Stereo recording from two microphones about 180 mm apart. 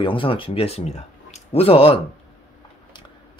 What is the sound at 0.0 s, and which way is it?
Speech, 30° left (ahead or behind).